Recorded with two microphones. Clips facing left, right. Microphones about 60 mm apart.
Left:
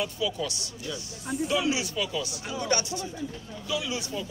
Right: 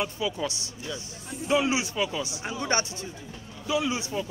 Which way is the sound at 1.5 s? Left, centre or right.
Right.